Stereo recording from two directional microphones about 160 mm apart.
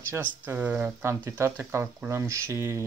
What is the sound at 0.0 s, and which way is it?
Speech, 15° right (ahead or behind).